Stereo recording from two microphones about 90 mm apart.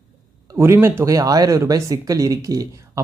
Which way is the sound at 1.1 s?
40° right (ahead or behind).